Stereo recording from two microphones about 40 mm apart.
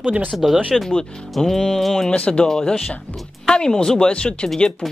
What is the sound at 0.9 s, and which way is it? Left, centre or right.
Speech, centre.